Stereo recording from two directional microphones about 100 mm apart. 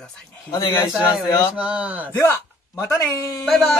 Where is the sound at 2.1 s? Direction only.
30° left (ahead or behind).